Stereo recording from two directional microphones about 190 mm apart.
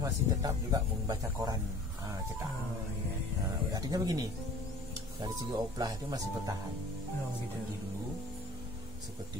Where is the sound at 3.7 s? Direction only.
20° right (ahead or behind).